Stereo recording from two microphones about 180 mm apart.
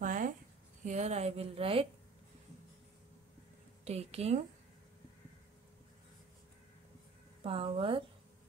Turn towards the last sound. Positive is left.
turn(degrees=-30)  # may be behind; listen again after turning